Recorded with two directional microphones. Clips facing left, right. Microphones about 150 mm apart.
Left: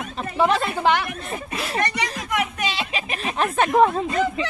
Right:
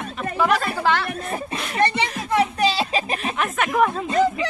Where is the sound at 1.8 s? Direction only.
30° right (ahead or behind).